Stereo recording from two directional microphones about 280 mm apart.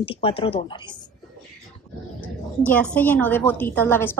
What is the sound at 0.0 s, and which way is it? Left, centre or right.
Speech, centre.